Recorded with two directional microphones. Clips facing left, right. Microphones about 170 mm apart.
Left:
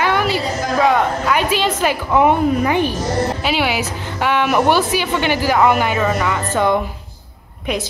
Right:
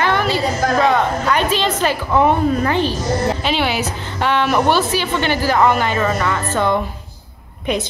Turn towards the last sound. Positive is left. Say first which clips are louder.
# left 1 dB
turn(degrees=15)  # may be behind; listen again after turning